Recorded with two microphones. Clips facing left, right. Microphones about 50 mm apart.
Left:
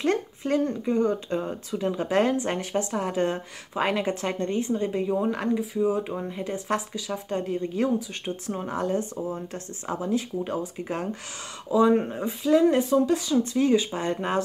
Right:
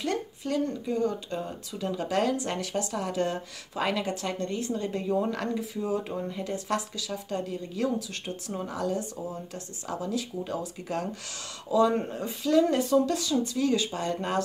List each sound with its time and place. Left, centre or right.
0.0 s speech: left; by 5.6 s centre
5.6 s speech: centre
13.4 s speech: left